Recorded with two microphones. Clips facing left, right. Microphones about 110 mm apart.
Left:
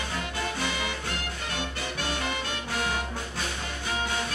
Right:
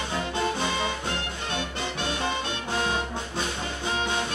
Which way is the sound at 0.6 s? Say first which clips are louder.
Right 3 dB; 25° right (ahead or behind).